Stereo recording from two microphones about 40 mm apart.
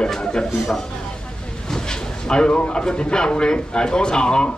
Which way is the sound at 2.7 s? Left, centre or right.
Left.